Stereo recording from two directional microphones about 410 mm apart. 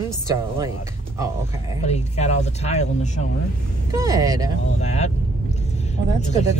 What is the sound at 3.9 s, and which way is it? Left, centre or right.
Speech, centre.